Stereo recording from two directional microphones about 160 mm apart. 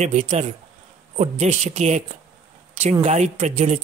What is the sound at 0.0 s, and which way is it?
A man's voice, 45° right (ahead or behind).